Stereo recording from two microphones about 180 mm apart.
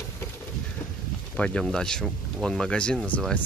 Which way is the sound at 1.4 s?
5° left (ahead or behind).